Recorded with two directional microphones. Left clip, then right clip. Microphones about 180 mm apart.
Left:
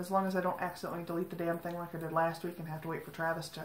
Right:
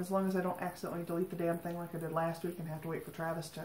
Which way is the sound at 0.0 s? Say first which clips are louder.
Left 3 dB; 15° left (ahead or behind).